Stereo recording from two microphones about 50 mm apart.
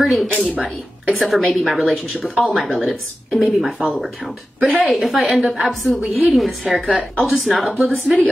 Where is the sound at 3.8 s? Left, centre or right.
Centre.